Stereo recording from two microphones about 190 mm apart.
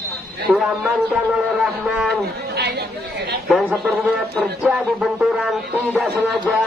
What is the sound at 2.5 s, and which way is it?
Chatter, 60° right (ahead or behind).